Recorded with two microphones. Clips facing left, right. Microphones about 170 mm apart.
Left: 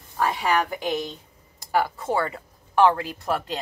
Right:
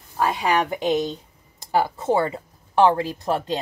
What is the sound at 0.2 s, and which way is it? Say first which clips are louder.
A woman's voice: right 2 dB; 15° right (ahead or behind).